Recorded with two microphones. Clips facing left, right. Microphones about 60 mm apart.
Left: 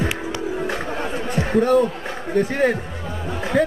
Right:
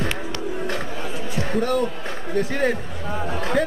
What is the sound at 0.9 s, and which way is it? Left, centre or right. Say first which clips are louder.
Chatter: left 4 dB; left.